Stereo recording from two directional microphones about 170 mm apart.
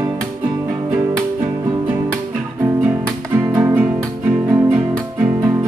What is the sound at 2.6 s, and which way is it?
Guitar, 10° right (ahead or behind).